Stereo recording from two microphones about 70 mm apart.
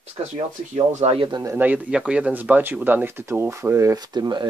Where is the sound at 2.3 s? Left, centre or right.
Right.